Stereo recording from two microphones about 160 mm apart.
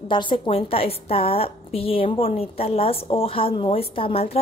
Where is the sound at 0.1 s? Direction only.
30° left (ahead or behind).